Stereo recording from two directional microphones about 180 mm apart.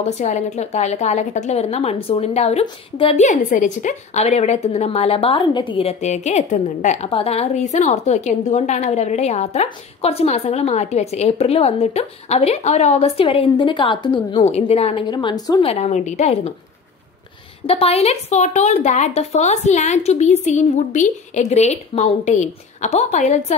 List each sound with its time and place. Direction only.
0.0 s a woman's voice: 40° left (ahead or behind)
15.0 s speech: 25° left (ahead or behind)
15.6 s a woman's voice: 35° left (ahead or behind)
17.6 s a woman's voice: 35° left (ahead or behind)